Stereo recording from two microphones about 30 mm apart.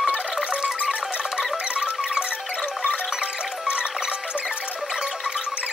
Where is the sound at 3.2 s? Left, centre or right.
Right.